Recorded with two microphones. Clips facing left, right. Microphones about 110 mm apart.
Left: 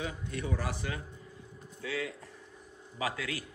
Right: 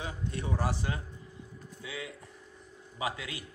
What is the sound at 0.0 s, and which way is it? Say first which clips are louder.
A man's voice: even; 30° right (ahead or behind).